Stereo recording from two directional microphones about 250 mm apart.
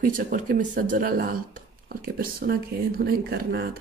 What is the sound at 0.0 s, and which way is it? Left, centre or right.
Speech, right.